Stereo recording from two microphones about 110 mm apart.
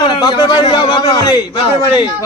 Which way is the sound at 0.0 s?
45° left (ahead or behind).